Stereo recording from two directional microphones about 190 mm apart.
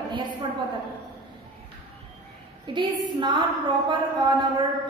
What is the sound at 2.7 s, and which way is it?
Speech, 25° right (ahead or behind).